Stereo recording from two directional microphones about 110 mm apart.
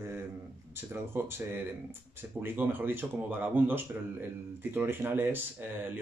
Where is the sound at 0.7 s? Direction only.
20° right (ahead or behind).